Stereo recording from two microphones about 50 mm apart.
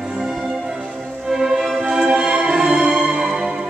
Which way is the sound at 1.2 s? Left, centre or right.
Centre.